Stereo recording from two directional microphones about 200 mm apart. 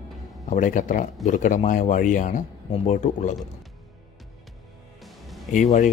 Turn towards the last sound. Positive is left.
turn(degrees=35)  # may be behind; listen again after turning